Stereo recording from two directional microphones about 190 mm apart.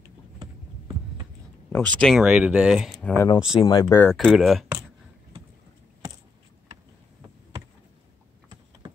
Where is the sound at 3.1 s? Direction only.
15° left (ahead or behind).